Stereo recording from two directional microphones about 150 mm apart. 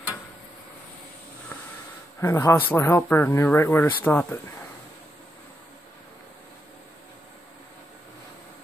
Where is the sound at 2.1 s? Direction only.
20° left (ahead or behind).